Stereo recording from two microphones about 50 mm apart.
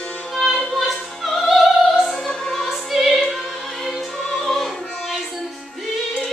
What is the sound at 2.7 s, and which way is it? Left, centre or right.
Music, centre.